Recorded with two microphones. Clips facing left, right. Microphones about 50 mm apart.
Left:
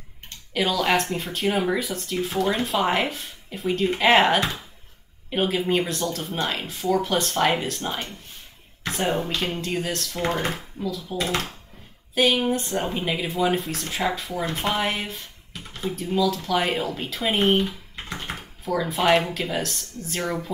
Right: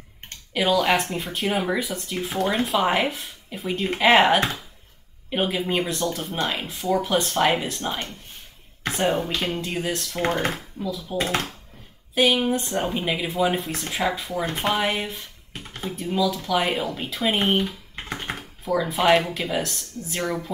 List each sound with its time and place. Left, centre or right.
0.6 s speech: centre
12.2 s speech: centre
18.1 s typing: right
18.7 s speech: centre